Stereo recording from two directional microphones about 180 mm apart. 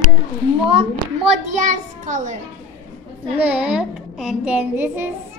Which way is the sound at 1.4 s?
45° right (ahead or behind).